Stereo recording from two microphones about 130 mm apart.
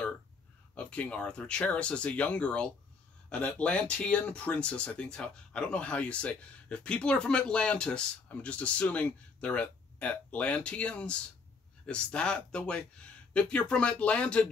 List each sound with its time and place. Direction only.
0.7 s speech: 10° left (ahead or behind)